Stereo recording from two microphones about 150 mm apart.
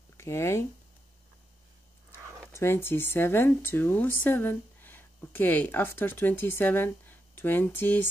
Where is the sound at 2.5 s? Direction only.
15° left (ahead or behind).